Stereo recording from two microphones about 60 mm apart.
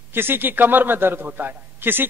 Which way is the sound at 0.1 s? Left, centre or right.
Right.